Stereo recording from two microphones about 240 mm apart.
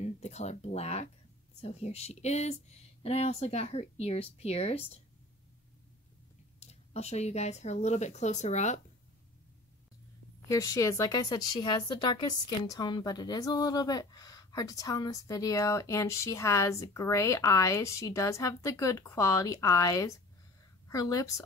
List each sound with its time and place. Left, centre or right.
0.0 s speech: left
6.6 s speech: left
10.5 s a woman's voice: centre